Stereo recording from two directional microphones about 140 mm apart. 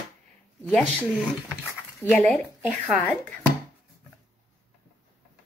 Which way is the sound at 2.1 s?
10° left (ahead or behind).